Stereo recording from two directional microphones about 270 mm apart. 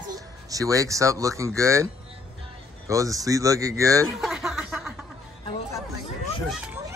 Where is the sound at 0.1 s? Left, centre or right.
Centre.